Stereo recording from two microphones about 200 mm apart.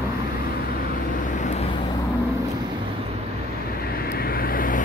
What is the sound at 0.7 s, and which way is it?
Vehicle, 45° left (ahead or behind).